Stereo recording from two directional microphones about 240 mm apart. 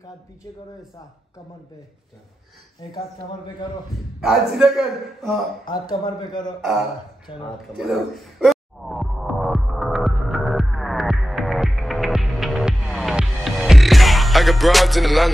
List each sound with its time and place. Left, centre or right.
2.8 s a man's voice: centre
4.2 s a man's voice: centre
5.7 s a man's voice: centre
6.6 s a man's voice: centre
7.3 s speech: left
7.7 s music: centre